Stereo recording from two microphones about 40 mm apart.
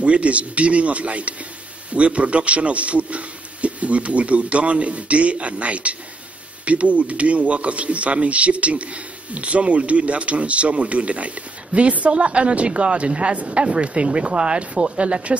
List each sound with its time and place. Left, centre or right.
0.0 s speech: right